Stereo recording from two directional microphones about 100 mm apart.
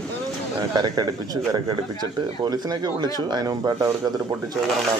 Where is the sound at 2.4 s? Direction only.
40° right (ahead or behind).